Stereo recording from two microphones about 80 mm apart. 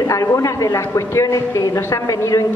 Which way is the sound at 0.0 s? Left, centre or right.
Left.